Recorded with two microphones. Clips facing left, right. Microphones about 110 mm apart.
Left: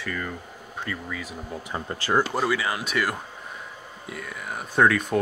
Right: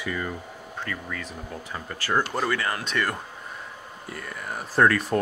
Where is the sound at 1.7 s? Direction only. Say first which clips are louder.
Left 2 dB; 20° left (ahead or behind).